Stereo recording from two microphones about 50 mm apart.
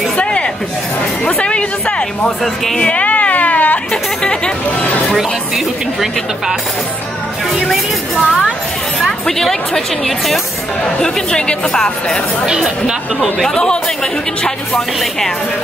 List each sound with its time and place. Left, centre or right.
0.2 s a sound: left
2.4 s a woman's voice: centre
2.8 s a sound: left
3.9 s speech: centre
7.7 s a woman's voice: centre
11.0 s speech: centre
12.4 s speech: centre
14.7 s speech: centre